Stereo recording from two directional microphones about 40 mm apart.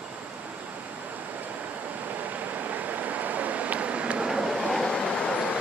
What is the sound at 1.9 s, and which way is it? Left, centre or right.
Vehicle, right.